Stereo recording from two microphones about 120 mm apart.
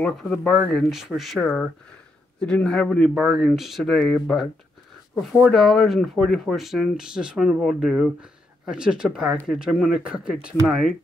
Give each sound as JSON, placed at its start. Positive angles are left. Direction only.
{"t": 0.0, "sound": "speech", "side_deg": 0}
{"t": 2.4, "sound": "speech", "side_deg": 10}
{"t": 5.5, "sound": "speech", "side_deg": 5}